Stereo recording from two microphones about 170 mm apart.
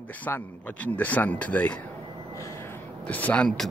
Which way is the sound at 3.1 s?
10° left (ahead or behind).